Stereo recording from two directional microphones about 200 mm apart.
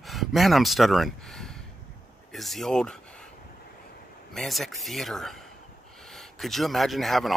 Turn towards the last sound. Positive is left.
turn(degrees=0)  # may be behind; listen again after turning